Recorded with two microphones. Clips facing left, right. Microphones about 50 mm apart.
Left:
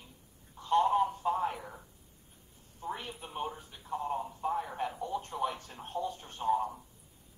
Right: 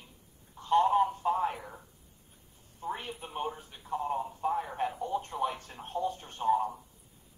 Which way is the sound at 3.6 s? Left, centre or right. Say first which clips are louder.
Right 2 dB; right.